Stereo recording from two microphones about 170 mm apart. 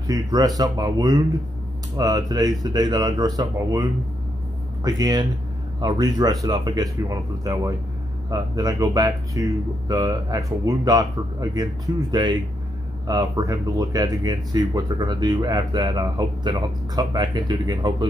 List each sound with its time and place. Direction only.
0.0 s speech: 25° right (ahead or behind)